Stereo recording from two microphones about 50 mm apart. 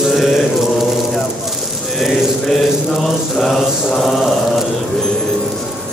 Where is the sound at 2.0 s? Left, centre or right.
Centre.